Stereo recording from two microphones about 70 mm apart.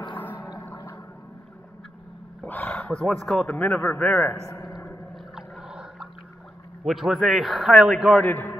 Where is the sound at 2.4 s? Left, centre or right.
Left.